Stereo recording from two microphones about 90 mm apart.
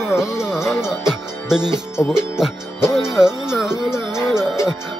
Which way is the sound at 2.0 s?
30° left (ahead or behind).